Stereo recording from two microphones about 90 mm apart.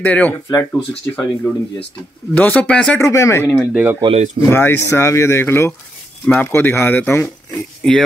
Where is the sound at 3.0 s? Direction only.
35° left (ahead or behind).